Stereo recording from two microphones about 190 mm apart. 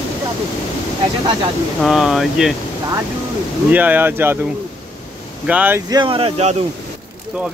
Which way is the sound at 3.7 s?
10° right (ahead or behind).